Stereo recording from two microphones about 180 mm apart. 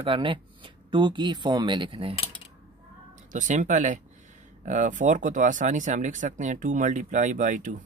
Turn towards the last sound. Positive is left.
turn(degrees=-45)  # may be behind; listen again after turning